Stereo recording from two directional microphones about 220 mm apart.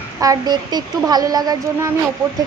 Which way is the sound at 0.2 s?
15° right (ahead or behind).